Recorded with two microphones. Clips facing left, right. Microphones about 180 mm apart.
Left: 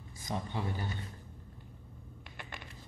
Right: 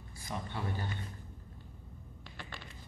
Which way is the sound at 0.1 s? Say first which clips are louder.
Left 3 dB; 20° left (ahead or behind).